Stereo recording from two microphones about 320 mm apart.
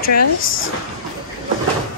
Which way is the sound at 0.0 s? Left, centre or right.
Left.